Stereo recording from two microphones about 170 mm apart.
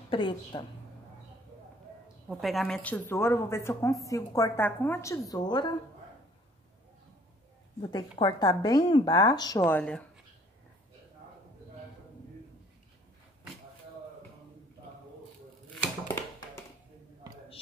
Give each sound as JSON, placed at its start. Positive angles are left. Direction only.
{"t": 0.1, "sound": "speech", "side_deg": 30}
{"t": 2.2, "sound": "a woman's voice", "side_deg": 0}
{"t": 5.3, "sound": "speech", "side_deg": 25}
{"t": 7.9, "sound": "speech", "side_deg": 25}
{"t": 9.7, "sound": "speech", "side_deg": 10}